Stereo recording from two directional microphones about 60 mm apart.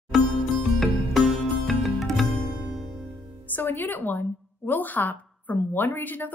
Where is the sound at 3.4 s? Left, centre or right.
Left.